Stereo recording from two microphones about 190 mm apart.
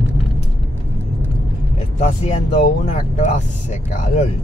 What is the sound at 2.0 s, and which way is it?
Speech, 40° left (ahead or behind).